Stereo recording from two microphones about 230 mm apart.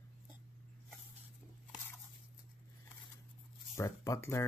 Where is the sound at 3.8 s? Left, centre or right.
Centre.